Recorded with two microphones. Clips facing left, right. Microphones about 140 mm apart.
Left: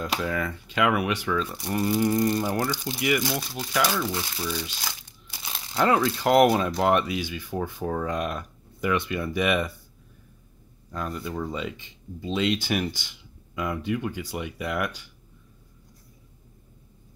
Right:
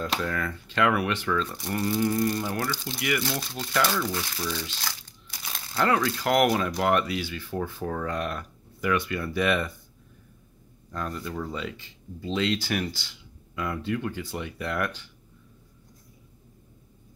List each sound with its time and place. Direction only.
0.0 s speech: 10° left (ahead or behind)
5.3 s crumpling: 20° left (ahead or behind)
5.6 s speech: 20° left (ahead or behind)
10.9 s speech: 5° left (ahead or behind)